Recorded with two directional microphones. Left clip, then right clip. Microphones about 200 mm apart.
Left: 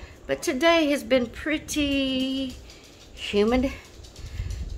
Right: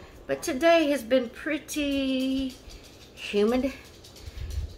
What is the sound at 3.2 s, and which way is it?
Speech, 45° left (ahead or behind).